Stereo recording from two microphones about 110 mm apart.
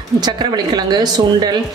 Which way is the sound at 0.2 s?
40° right (ahead or behind).